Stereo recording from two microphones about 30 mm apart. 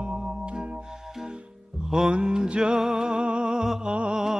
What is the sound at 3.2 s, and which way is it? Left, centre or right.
Music, right.